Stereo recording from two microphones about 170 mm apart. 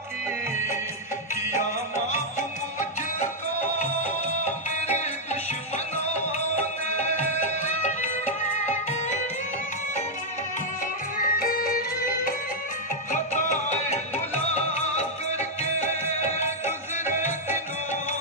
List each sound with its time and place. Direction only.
1.3 s music: 45° left (ahead or behind)
4.5 s music: 45° left (ahead or behind)
11.2 s music: 55° left (ahead or behind)
13.1 s music: 45° left (ahead or behind)